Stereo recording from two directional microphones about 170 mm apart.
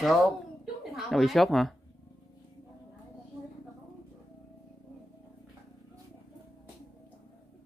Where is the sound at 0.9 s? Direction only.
Centre (ahead or behind).